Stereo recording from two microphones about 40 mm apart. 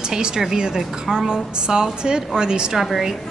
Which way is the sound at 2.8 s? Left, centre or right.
Centre.